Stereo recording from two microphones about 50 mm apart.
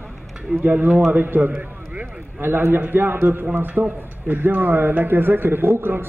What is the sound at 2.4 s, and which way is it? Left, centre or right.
A man's voice, right.